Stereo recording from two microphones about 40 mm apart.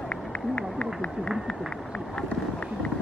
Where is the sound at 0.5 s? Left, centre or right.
Left.